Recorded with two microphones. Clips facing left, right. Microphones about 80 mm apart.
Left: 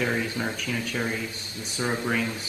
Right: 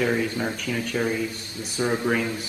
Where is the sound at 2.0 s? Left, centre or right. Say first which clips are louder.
Right 3 dB; centre.